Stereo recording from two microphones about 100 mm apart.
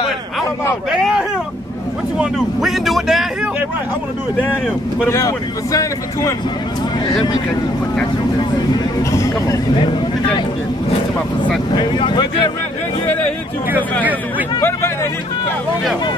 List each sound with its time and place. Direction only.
0.9 s vehicle: 5° right (ahead or behind)
2.1 s speech: centre (ahead or behind)
5.1 s speech: 35° left (ahead or behind)
9.1 s speech: 30° left (ahead or behind)
11.7 s speech: 50° left (ahead or behind)